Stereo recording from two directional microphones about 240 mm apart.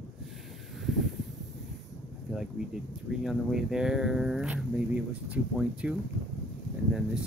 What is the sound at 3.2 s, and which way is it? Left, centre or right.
Speech, centre.